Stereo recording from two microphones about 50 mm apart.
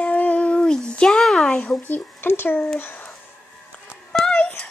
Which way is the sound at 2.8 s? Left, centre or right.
Left.